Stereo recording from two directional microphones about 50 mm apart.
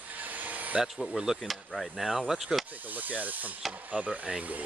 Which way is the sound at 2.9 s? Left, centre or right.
Right.